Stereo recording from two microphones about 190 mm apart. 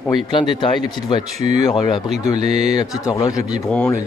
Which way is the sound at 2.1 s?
35° right (ahead or behind).